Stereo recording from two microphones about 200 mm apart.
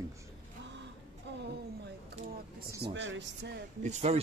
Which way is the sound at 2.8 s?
65° right (ahead or behind).